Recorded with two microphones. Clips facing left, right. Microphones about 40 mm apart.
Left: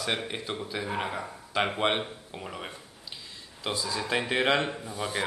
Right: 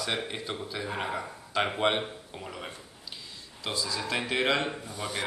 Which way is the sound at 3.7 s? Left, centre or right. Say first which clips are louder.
Right 1 dB; left.